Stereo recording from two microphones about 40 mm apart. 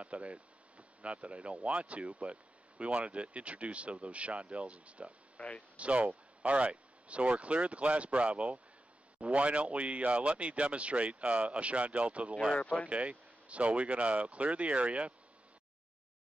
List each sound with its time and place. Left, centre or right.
0.0 s speech: right
5.4 s speech: left
5.8 s speech: right
12.5 s speech: left
12.8 s speech: right